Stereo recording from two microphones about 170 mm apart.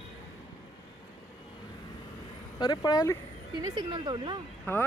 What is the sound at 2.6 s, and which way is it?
Speech, 25° left (ahead or behind).